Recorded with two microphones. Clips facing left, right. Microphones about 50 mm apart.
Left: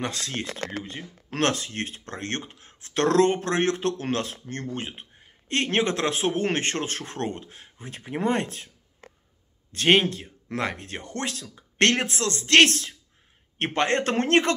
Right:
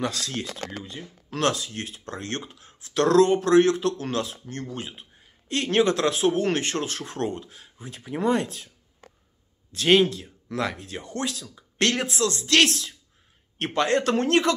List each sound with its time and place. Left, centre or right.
0.0 s speech: left